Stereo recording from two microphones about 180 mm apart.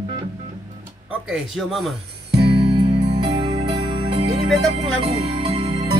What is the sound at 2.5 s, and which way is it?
Music, 25° right (ahead or behind).